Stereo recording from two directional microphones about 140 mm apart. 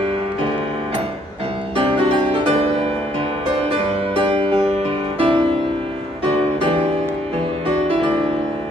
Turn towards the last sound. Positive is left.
turn(degrees=-40)  # may be behind; listen again after turning